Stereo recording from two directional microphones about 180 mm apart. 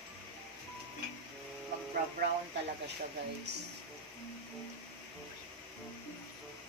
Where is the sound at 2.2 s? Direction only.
65° right (ahead or behind).